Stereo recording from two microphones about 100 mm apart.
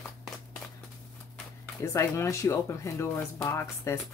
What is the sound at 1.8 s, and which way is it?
Speech, 30° left (ahead or behind).